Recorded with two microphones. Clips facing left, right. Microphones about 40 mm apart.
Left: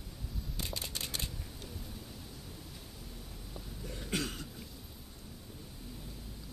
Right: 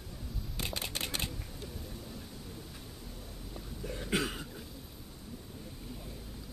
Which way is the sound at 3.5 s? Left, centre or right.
Centre.